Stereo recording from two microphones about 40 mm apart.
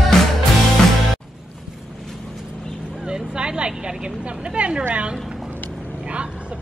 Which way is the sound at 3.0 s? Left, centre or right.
Right.